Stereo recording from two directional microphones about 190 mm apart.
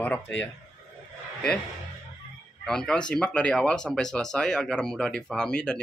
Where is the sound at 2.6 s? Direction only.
5° left (ahead or behind).